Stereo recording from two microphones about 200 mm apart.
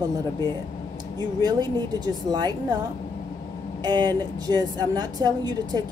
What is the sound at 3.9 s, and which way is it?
Speech, 20° right (ahead or behind).